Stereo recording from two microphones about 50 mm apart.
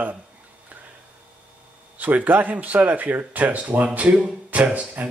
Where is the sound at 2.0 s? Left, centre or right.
Right.